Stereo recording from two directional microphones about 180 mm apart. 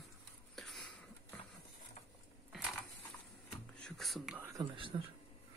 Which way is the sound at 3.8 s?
Centre (ahead or behind).